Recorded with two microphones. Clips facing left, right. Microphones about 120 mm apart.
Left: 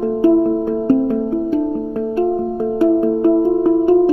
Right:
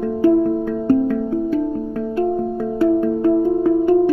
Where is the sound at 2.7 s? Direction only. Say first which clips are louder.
Left 2 dB; 25° left (ahead or behind).